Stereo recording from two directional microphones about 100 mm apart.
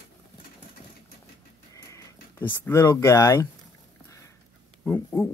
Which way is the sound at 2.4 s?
25° left (ahead or behind).